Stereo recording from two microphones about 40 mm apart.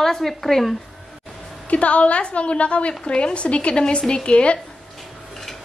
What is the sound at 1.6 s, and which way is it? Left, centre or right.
A woman's voice, left.